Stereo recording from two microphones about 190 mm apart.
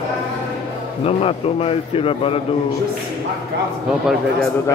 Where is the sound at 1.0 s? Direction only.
30° left (ahead or behind).